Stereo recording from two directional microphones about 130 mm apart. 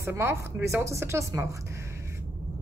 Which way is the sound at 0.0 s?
20° right (ahead or behind).